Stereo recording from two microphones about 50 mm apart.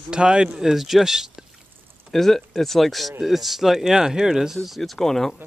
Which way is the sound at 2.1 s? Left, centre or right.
Centre.